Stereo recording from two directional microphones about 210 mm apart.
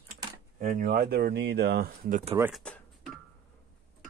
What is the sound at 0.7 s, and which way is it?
Speech, 45° right (ahead or behind).